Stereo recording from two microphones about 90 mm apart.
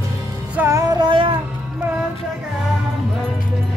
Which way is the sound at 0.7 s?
50° right (ahead or behind).